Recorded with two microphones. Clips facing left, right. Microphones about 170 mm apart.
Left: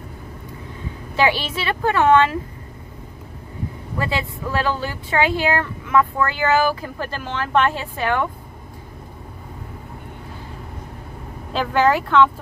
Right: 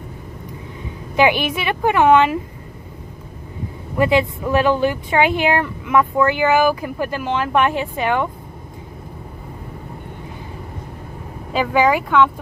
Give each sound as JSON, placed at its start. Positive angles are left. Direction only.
{"t": 1.1, "sound": "speech", "side_deg": -15}
{"t": 4.0, "sound": "speech", "side_deg": -20}
{"t": 11.5, "sound": "speech", "side_deg": -10}